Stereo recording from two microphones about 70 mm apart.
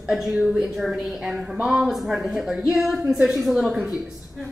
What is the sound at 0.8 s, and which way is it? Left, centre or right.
A woman's voice, centre.